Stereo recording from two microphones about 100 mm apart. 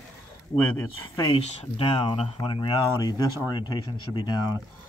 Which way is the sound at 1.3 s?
60° left (ahead or behind).